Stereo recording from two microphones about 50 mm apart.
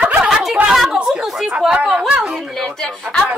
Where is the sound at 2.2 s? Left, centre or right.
Centre.